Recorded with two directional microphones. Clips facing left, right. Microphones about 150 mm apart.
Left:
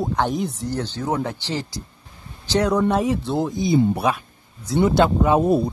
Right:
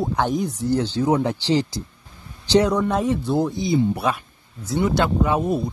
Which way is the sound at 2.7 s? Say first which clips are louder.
Left 1 dB; 5° left (ahead or behind).